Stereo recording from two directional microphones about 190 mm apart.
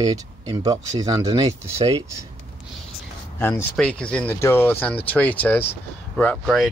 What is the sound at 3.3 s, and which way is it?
Speech, 10° left (ahead or behind).